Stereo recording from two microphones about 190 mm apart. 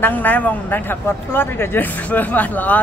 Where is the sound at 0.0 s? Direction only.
10° left (ahead or behind).